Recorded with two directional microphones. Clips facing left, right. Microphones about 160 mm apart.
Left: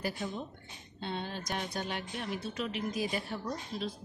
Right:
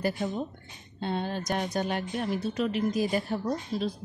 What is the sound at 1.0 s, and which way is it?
Speech, 45° right (ahead or behind).